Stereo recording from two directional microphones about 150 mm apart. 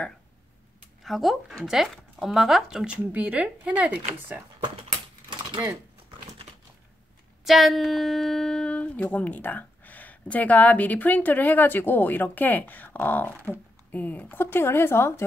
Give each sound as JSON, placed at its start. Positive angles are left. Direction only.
{"t": 1.0, "sound": "speech", "side_deg": 0}
{"t": 5.3, "sound": "typewriter", "side_deg": -30}
{"t": 7.4, "sound": "speech", "side_deg": 0}